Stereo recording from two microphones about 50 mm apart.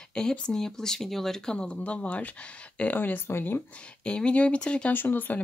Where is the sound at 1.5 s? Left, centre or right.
Left.